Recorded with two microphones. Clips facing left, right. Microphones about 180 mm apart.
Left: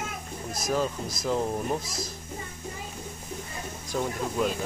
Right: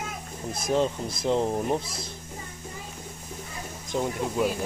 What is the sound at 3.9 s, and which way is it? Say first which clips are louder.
Speech: right 2 dB; 15° right (ahead or behind).